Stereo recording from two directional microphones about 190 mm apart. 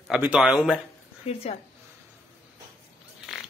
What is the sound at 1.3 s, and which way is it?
Speech, 35° left (ahead or behind).